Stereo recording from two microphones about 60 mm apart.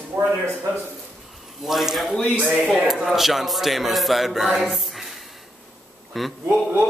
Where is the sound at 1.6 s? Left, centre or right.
Centre.